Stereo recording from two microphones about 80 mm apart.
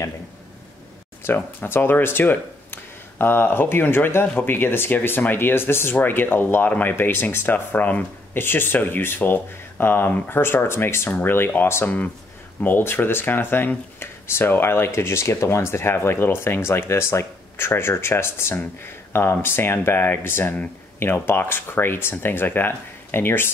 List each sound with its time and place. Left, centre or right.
1.2 s speech: left